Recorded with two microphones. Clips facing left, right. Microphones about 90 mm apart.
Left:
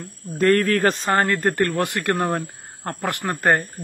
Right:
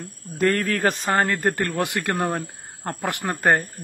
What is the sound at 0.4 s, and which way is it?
Speech, 10° right (ahead or behind).